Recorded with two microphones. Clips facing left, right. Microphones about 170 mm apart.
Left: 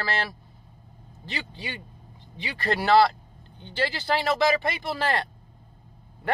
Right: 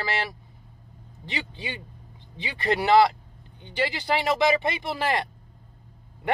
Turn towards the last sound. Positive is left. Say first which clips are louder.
# even
turn(degrees=-15)  # may be behind; listen again after turning